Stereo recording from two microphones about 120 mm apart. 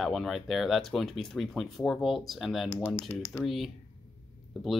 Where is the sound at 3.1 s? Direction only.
20° left (ahead or behind).